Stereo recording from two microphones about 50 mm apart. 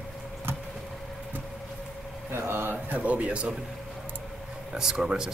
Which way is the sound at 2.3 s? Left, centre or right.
Right.